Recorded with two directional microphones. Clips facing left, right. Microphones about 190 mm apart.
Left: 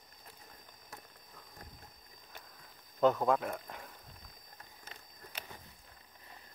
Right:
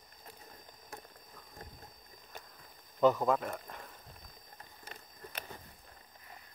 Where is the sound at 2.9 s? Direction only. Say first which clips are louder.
Right 1 dB; centre (ahead or behind).